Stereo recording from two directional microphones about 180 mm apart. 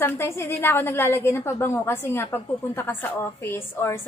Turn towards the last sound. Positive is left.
turn(degrees=15)  # may be behind; listen again after turning